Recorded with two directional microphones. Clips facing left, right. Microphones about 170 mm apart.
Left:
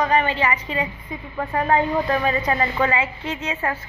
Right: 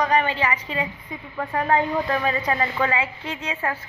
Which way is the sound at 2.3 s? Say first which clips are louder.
Left 2 dB; 5° left (ahead or behind).